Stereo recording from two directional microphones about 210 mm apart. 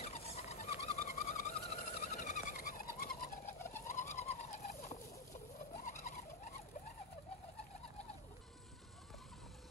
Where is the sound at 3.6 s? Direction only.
10° left (ahead or behind).